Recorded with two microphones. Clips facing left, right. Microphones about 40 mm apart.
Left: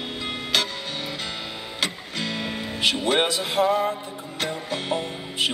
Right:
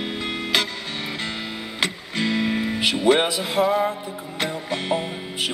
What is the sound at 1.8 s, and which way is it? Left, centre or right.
Music, centre.